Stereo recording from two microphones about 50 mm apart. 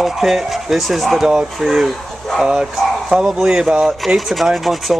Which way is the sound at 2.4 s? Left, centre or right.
Centre.